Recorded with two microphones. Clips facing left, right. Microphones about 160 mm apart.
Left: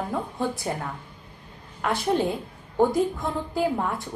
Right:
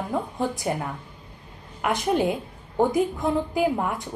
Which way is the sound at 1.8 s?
15° right (ahead or behind).